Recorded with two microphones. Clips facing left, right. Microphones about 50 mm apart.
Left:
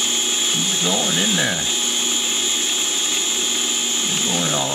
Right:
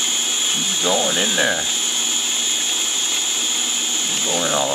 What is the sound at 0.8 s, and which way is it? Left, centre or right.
Speech, centre.